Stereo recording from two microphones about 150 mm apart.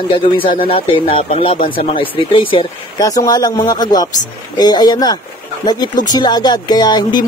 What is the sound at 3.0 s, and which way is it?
Speech, 25° left (ahead or behind).